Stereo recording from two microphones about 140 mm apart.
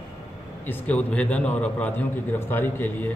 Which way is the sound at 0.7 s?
10° left (ahead or behind).